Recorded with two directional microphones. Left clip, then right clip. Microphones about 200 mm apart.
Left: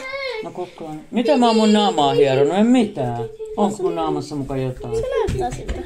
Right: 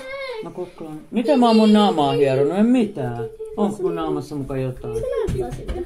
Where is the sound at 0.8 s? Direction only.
Centre (ahead or behind).